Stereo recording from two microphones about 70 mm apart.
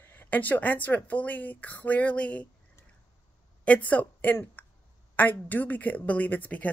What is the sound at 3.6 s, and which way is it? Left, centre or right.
A woman's voice, left.